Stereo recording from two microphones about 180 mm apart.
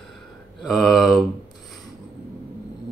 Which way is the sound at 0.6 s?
Centre (ahead or behind).